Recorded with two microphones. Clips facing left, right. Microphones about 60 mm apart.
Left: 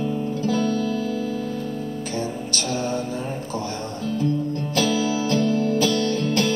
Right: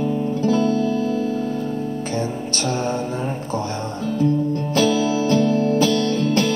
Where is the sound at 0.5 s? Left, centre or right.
Right.